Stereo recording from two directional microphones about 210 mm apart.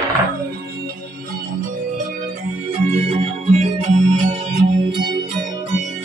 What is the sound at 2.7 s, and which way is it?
Organ, 30° right (ahead or behind).